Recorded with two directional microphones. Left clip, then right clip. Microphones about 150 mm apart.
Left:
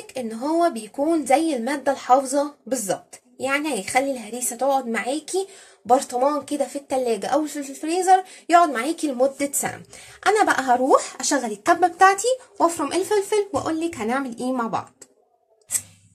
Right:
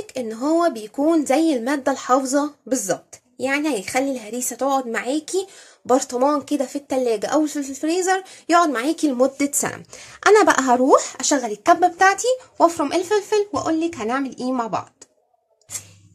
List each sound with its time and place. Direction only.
0.0 s a woman's voice: 35° right (ahead or behind); by 14.8 s 20° right (ahead or behind)